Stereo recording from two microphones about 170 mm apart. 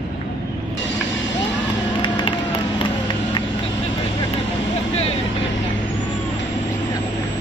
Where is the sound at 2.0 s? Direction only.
30° left (ahead or behind).